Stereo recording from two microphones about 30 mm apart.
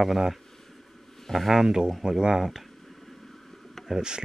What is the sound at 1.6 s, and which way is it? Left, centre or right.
Speech, right.